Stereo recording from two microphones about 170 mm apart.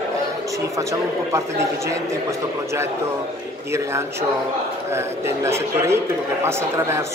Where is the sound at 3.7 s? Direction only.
15° right (ahead or behind).